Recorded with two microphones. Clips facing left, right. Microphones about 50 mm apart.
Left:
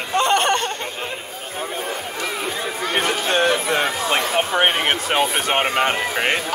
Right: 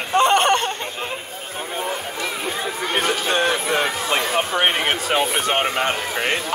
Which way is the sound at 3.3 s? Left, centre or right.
Centre.